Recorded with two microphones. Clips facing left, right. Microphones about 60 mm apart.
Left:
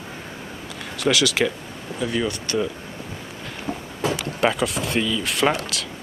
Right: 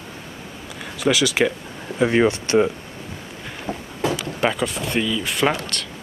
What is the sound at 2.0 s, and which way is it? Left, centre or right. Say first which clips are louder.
Speech: right 7 dB; right.